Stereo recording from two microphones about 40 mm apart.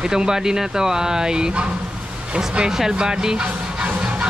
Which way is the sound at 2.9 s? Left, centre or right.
Centre.